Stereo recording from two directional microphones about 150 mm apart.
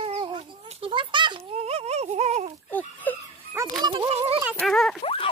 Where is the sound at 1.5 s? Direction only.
45° right (ahead or behind).